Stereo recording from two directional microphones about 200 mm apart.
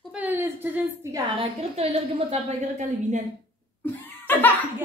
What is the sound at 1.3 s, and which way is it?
A woman's voice, 30° right (ahead or behind).